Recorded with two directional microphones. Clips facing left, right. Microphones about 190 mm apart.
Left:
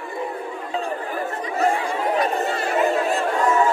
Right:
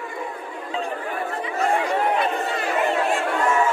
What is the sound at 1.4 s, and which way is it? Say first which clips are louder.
Chatter: left 1 dB; 40° left (ahead or behind).